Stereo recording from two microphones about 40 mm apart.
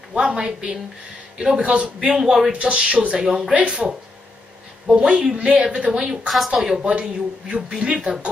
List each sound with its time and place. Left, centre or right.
0.1 s speech: right
4.9 s speech: right
6.2 s speech: centre
6.5 s speech: centre
6.9 s speech: right